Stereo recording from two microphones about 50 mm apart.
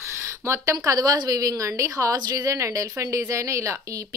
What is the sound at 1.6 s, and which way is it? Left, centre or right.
Speech, right.